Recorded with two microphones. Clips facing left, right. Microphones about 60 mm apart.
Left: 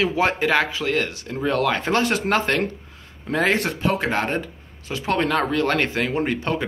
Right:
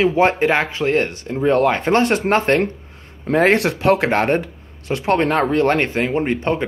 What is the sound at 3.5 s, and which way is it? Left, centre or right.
Speech, right.